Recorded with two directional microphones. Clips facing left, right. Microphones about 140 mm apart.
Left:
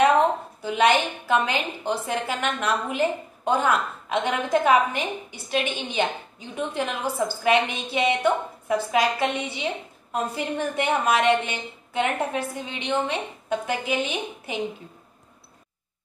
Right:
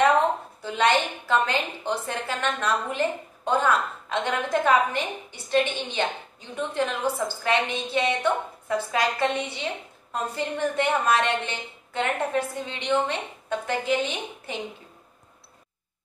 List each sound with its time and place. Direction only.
0.6 s a woman's voice: 15° left (ahead or behind)